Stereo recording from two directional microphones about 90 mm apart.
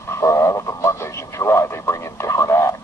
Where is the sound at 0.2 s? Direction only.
35° left (ahead or behind).